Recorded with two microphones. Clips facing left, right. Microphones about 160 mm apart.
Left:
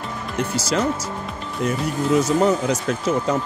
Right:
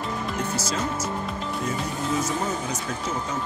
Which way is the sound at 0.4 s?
70° left (ahead or behind).